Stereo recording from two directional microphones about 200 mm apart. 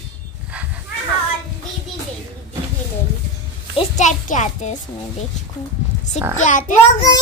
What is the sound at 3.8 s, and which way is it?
A child's voice, 35° left (ahead or behind).